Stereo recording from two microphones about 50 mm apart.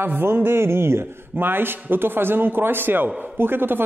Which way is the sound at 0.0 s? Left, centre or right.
Right.